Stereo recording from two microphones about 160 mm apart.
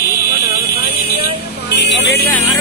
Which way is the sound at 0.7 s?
75° left (ahead or behind).